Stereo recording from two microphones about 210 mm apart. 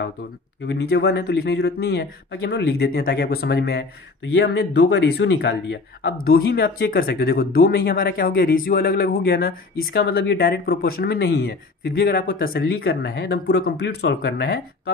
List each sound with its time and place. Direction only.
0.7 s speech: 50° left (ahead or behind)